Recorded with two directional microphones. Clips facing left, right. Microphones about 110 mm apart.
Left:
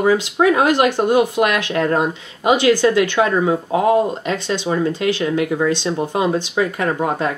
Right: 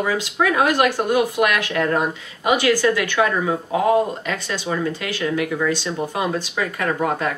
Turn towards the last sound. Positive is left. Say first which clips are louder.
# left 2 dB
turn(degrees=25)  # may be behind; listen again after turning